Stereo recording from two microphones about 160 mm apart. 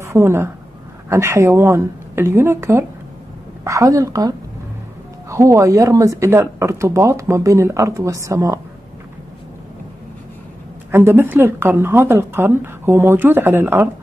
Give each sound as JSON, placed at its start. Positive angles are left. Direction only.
{"t": 0.0, "sound": "a woman's voice", "side_deg": -15}
{"t": 10.9, "sound": "a woman's voice", "side_deg": -15}